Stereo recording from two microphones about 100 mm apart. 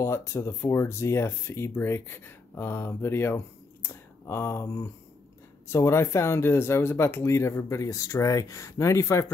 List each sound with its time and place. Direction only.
0.0 s speech: 30° left (ahead or behind)